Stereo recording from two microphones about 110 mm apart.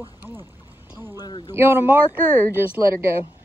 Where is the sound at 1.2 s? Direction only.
40° left (ahead or behind).